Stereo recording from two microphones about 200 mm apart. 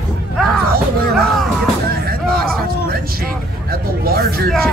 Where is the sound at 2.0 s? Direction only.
50° right (ahead or behind).